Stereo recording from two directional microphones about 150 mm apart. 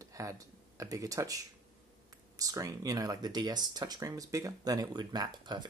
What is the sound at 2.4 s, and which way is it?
Speech, 25° right (ahead or behind).